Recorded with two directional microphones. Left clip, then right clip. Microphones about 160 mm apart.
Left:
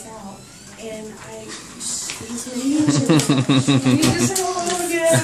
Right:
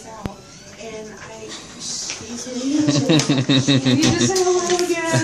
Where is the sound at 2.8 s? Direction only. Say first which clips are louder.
Even; 20° left (ahead or behind).